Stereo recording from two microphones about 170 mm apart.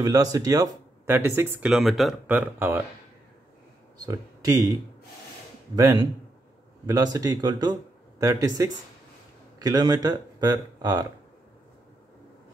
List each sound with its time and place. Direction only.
0.0 s speech: 20° right (ahead or behind)
1.7 s speech: centre (ahead or behind)
4.0 s speech: 20° right (ahead or behind)
5.8 s speech: 20° right (ahead or behind)